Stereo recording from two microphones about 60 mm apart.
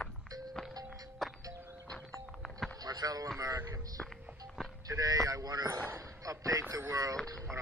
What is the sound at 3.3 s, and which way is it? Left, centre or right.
Speech, right.